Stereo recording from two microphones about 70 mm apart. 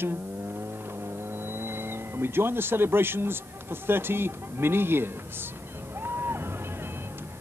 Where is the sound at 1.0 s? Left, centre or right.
Right.